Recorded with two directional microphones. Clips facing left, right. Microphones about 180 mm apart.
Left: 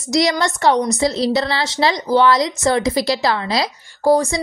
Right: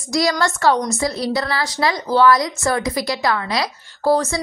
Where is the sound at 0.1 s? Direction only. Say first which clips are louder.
Left 2 dB; 20° left (ahead or behind).